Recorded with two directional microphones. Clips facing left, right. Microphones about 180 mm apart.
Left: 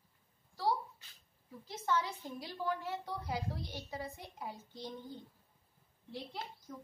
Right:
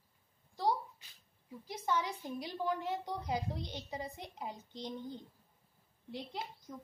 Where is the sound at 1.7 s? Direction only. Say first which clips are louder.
Even; 15° right (ahead or behind).